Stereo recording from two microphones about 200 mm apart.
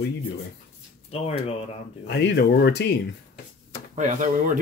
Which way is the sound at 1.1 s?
30° left (ahead or behind).